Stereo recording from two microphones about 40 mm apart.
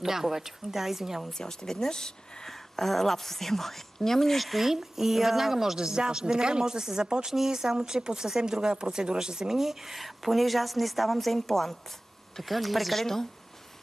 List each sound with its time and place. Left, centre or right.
0.0 s speech: centre
1.4 s speech: centre